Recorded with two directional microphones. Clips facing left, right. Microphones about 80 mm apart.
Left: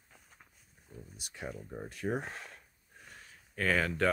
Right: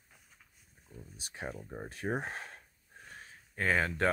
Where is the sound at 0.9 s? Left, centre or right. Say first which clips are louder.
Left 1 dB; left.